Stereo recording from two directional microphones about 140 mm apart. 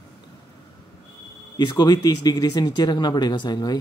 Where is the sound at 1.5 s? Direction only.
30° left (ahead or behind).